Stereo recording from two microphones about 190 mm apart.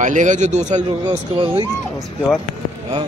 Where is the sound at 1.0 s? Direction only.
20° right (ahead or behind).